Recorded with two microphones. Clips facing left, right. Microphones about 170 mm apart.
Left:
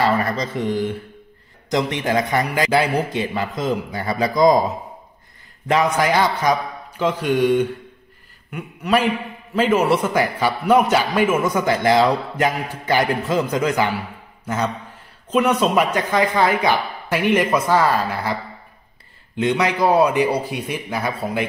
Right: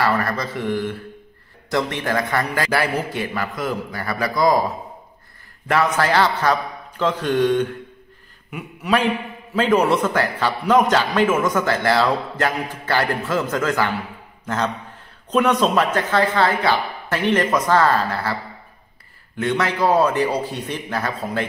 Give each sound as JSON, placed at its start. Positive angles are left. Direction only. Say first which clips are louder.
{"t": 0.0, "sound": "a man's voice", "louder": "left 1 dB", "side_deg": 20}
{"t": 8.5, "sound": "a man's voice", "louder": "left 1 dB", "side_deg": 0}